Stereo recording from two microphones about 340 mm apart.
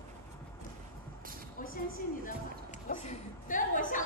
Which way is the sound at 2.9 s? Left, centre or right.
Left.